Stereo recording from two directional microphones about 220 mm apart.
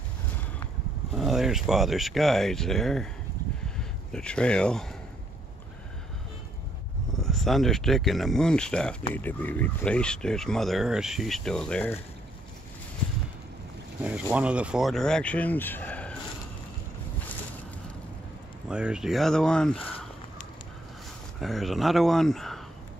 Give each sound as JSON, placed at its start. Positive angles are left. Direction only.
{"t": 1.1, "sound": "speech", "side_deg": 0}
{"t": 7.2, "sound": "speech", "side_deg": 0}
{"t": 14.0, "sound": "speech", "side_deg": -5}
{"t": 18.7, "sound": "speech", "side_deg": -5}
{"t": 21.4, "sound": "speech", "side_deg": 0}